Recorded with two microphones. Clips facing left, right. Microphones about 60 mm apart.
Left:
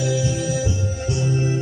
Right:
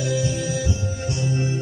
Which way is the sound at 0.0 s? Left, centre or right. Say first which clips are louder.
Left 2 dB; right.